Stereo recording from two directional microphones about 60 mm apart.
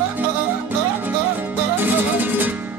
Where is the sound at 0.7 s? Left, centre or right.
Right.